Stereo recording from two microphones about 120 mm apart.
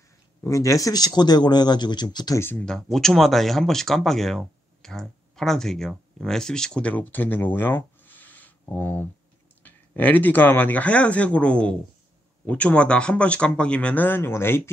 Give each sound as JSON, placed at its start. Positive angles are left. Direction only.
{"t": 0.4, "sound": "speech", "side_deg": 25}
{"t": 2.3, "sound": "speech", "side_deg": 20}
{"t": 2.6, "sound": "speech", "side_deg": 5}